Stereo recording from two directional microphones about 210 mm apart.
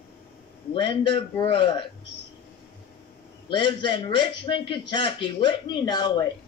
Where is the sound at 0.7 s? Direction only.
25° left (ahead or behind).